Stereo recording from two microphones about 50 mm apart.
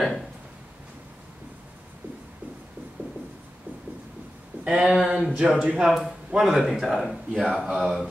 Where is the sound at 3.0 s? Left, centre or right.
Right.